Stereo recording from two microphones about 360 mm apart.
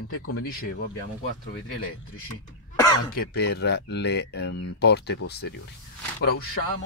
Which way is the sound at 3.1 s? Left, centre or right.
Left.